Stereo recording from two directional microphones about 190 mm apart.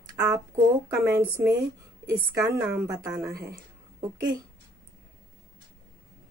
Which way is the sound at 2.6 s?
5° right (ahead or behind).